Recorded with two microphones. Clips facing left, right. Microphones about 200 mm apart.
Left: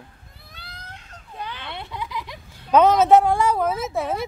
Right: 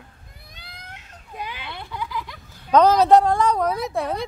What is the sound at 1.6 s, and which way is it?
Baby laughter, 25° left (ahead or behind).